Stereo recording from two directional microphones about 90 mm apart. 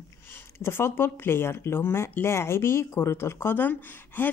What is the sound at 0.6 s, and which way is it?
Speech, 25° left (ahead or behind).